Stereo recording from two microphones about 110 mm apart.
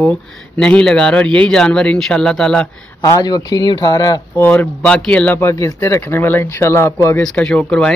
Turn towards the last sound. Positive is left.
turn(degrees=10)  # may be behind; listen again after turning